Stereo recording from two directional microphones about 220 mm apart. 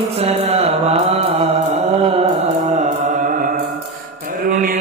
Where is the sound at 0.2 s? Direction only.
30° right (ahead or behind).